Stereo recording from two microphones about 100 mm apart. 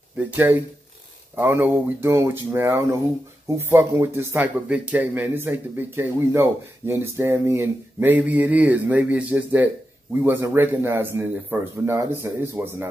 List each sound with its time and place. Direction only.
1.3 s speech: 20° right (ahead or behind)